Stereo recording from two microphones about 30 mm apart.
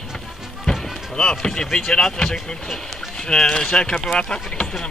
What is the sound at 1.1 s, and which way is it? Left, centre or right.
Speech, left.